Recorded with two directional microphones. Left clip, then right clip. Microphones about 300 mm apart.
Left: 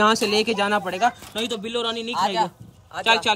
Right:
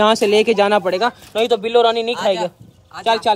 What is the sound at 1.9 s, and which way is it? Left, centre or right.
Speech, centre.